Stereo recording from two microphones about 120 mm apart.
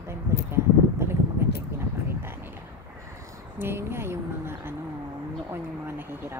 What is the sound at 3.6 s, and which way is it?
Speech, 20° right (ahead or behind).